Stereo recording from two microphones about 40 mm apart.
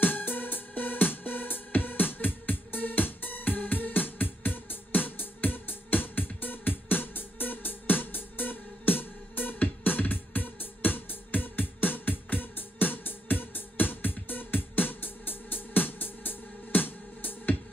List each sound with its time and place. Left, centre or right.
0.0 s music: left